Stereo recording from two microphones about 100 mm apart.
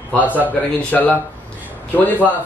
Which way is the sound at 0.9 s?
15° left (ahead or behind).